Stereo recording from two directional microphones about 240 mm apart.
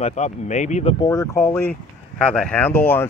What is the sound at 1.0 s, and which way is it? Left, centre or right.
Speech, centre.